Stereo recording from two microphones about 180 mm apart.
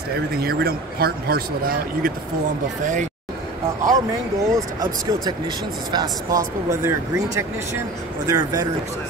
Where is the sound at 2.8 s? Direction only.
45° right (ahead or behind).